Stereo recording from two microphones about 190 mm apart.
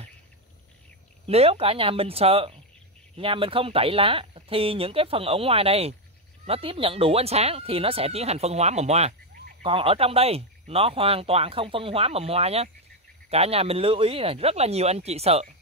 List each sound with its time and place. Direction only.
1.2 s speech: 30° right (ahead or behind)